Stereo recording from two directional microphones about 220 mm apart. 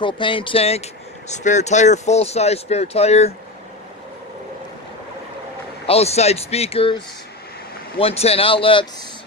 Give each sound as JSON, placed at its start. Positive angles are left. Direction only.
{"t": 0.0, "sound": "speech", "side_deg": 20}
{"t": 5.9, "sound": "speech", "side_deg": 30}
{"t": 8.0, "sound": "speech", "side_deg": 30}